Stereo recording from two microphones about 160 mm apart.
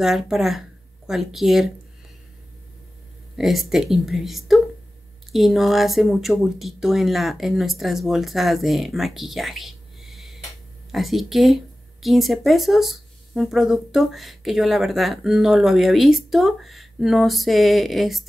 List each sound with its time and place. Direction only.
0.0 s speech: centre (ahead or behind)
3.3 s speech: centre (ahead or behind)